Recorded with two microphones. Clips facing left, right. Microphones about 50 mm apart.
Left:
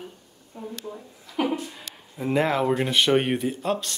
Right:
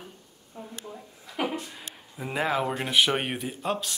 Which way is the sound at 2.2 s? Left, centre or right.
Centre.